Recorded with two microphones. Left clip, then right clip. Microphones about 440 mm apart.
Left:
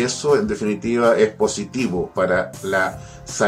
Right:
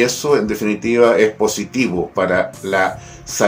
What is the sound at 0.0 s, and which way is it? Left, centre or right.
Speech, left.